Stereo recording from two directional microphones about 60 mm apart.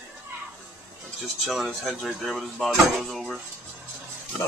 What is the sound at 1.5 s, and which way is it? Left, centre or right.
Speech, centre.